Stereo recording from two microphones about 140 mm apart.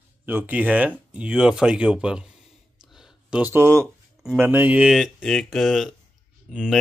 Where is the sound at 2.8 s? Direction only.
5° right (ahead or behind).